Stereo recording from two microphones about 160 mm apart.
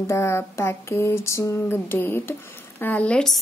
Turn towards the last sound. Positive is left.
turn(degrees=5)  # may be behind; listen again after turning